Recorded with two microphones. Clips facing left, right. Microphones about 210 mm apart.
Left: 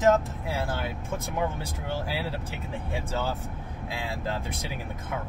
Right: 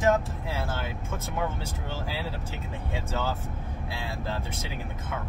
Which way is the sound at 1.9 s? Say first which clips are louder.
Left 4 dB; 15° left (ahead or behind).